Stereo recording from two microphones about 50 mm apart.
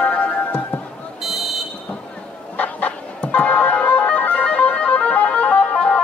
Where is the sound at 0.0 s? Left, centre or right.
Left.